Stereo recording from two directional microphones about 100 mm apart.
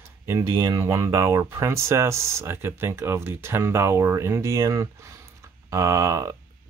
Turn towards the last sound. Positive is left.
turn(degrees=-30)  # may be behind; listen again after turning